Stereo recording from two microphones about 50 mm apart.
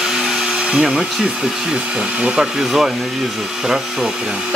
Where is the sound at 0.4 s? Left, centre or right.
Centre.